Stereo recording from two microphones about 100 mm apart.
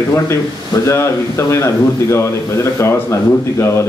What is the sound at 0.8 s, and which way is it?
A man's voice, 30° left (ahead or behind).